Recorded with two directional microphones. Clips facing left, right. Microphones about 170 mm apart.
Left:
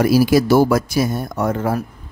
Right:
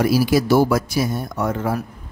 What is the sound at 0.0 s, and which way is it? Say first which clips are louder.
A man's voice: left 3 dB; 45° left (ahead or behind).